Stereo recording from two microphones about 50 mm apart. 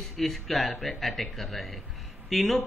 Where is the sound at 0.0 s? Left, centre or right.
Centre.